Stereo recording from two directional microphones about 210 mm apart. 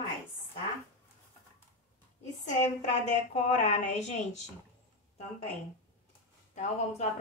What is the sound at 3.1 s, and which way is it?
A woman's voice, 35° left (ahead or behind).